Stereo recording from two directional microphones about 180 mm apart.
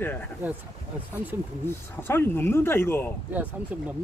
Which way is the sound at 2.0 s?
10° left (ahead or behind).